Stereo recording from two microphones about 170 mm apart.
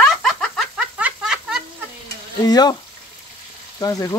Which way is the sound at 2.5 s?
25° left (ahead or behind).